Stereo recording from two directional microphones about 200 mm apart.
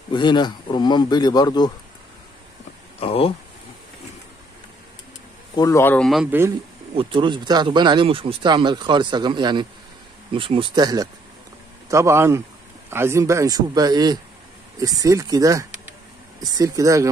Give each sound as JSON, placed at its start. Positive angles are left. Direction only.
{"t": 0.1, "sound": "speech", "side_deg": 20}
{"t": 3.0, "sound": "speech", "side_deg": 30}
{"t": 5.6, "sound": "speech", "side_deg": 15}
{"t": 7.0, "sound": "a man's voice", "side_deg": -25}